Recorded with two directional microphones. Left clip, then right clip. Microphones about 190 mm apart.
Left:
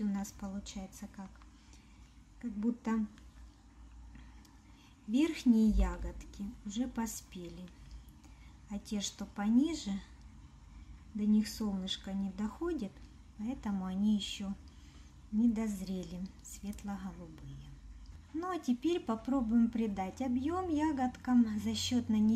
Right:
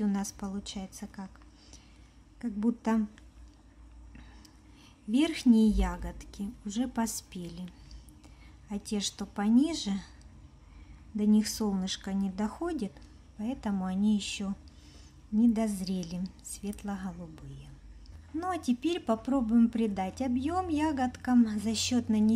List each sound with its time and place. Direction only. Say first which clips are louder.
0.0 s a woman's voice: right 6 dB; 25° right (ahead or behind)
2.6 s a woman's voice: right 6 dB; 25° right (ahead or behind)
5.1 s a woman's voice: right 4 dB; 25° right (ahead or behind)
8.6 s a woman's voice: right 6 dB; 20° right (ahead or behind)
11.1 s a woman's voice: right 5 dB; 25° right (ahead or behind)